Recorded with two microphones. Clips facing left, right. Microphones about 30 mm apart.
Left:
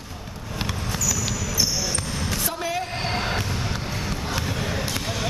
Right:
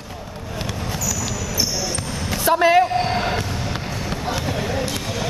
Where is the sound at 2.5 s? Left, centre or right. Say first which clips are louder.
Right 18 dB; right.